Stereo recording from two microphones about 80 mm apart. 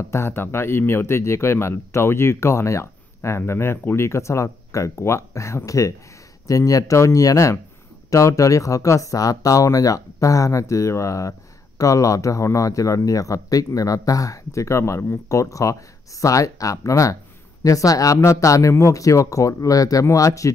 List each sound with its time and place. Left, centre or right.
0.1 s speech: left